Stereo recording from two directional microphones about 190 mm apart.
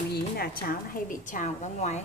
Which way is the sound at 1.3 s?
40° left (ahead or behind).